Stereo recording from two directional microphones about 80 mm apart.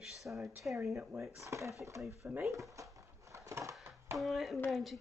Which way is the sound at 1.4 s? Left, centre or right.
Right.